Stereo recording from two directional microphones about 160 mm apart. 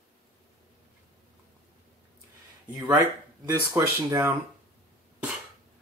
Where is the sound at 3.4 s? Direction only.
15° right (ahead or behind).